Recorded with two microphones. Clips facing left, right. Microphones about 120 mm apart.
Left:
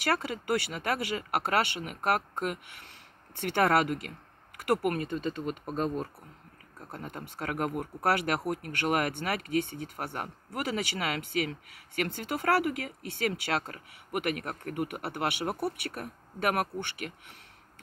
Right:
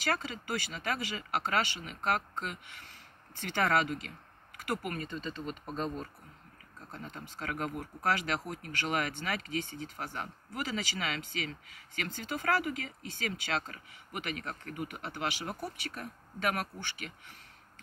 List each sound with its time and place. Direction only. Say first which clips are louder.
0.0 s speech: left 4 dB; 60° left (ahead or behind)